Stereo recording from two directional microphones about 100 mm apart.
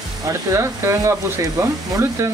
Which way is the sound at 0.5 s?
30° right (ahead or behind).